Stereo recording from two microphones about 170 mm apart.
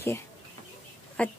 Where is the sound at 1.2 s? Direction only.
10° left (ahead or behind).